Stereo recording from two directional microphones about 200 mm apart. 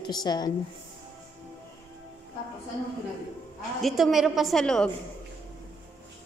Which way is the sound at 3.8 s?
Centre (ahead or behind).